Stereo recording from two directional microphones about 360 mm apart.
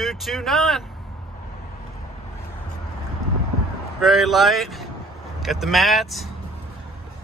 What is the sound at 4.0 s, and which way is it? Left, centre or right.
Speech, centre.